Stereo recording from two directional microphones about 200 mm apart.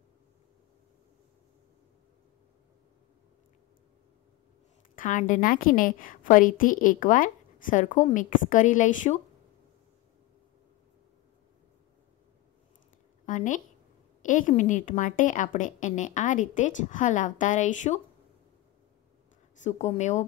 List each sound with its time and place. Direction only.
4.9 s a woman's voice: 40° left (ahead or behind)
13.2 s a woman's voice: 40° left (ahead or behind)
19.6 s a woman's voice: 35° left (ahead or behind)